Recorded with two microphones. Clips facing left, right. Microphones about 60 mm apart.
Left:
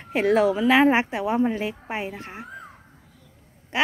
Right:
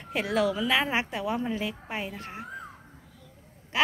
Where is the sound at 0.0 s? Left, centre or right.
Left.